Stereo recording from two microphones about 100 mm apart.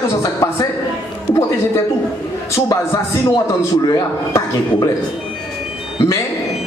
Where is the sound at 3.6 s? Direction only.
35° left (ahead or behind).